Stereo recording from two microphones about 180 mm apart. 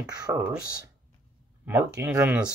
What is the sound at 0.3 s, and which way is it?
Speech, 20° right (ahead or behind).